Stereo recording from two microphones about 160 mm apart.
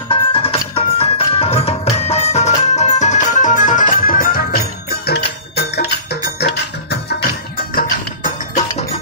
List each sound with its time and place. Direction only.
0.1 s music: 35° left (ahead or behind); by 4.6 s 70° left (ahead or behind)
5.0 s music: 90° left; by 8.6 s 55° left (ahead or behind)